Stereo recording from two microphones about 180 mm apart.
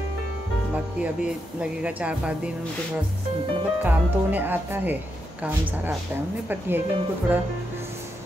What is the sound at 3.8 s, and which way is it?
Speech, 10° right (ahead or behind).